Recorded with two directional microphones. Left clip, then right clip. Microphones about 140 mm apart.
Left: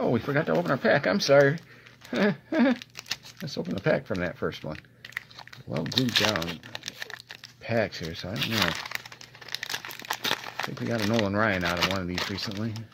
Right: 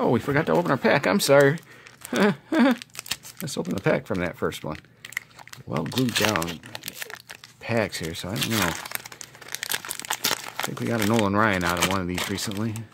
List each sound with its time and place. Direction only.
0.0 s speech: 35° right (ahead or behind)
2.0 s a sound: 30° right (ahead or behind)
2.8 s a sound: 5° right (ahead or behind)
3.4 s speech: 35° right (ahead or behind)
5.8 s speech: 5° right (ahead or behind)
6.3 s crumpling: 10° right (ahead or behind)
7.6 s speech: 35° right (ahead or behind)
8.4 s speech: 5° right (ahead or behind)
8.7 s crumpling: 25° right (ahead or behind)
9.7 s crumpling: centre (ahead or behind)
10.9 s speech: 30° right (ahead or behind)
11.2 s speech: 40° right (ahead or behind)
11.6 s speech: 15° right (ahead or behind)